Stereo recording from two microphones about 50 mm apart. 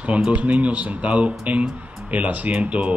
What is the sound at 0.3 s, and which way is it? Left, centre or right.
Speech, right.